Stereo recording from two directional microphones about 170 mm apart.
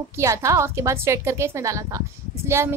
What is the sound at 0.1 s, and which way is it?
A woman's voice, 15° right (ahead or behind).